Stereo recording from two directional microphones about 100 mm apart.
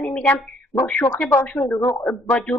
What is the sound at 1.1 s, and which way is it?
Speech, 10° left (ahead or behind).